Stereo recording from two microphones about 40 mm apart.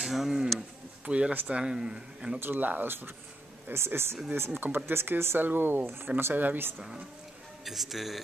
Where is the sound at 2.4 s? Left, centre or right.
Right.